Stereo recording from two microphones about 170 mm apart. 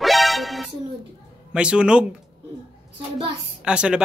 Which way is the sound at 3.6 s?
5° right (ahead or behind).